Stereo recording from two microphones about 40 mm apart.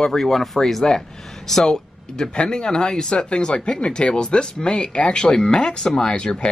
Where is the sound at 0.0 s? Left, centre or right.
Centre.